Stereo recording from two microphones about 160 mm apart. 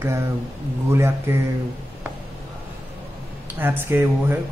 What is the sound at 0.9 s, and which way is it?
Speech, 15° right (ahead or behind).